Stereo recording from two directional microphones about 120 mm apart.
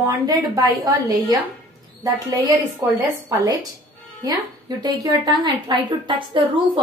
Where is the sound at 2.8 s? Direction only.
30° right (ahead or behind).